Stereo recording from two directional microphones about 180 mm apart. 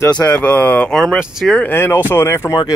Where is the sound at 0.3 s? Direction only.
5° left (ahead or behind).